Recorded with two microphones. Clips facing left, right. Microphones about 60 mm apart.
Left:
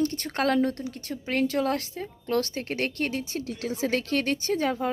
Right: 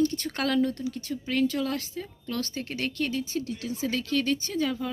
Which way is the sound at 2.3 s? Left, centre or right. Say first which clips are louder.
Left 5 dB; left.